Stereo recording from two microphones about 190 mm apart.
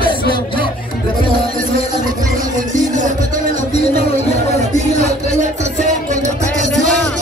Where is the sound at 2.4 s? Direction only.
40° right (ahead or behind).